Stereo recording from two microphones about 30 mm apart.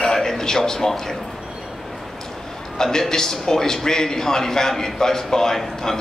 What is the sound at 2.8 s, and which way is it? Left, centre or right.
Speech, centre.